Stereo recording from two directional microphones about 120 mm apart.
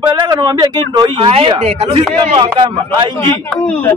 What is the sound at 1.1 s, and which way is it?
Speech, 50° right (ahead or behind).